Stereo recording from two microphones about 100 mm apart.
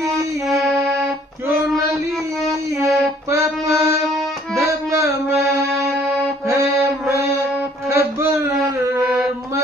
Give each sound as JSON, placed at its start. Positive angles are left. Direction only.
{"t": 0.5, "sound": "music", "side_deg": 0}
{"t": 3.3, "sound": "mantra", "side_deg": -30}
{"t": 4.6, "sound": "music", "side_deg": -30}
{"t": 6.0, "sound": "music", "side_deg": 0}
{"t": 6.5, "sound": "music", "side_deg": -30}
{"t": 7.9, "sound": "a sound", "side_deg": -30}